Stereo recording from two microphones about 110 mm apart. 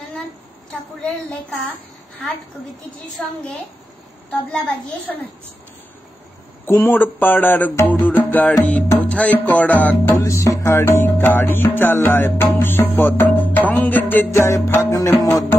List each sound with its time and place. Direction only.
1.0 s speech: 10° left (ahead or behind)
3.2 s speech: 10° left (ahead or behind)
6.6 s speech: 20° left (ahead or behind)
10.1 s music: 30° left (ahead or behind)